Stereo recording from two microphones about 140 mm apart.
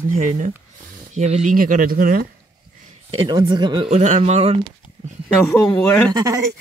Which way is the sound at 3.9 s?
55° right (ahead or behind).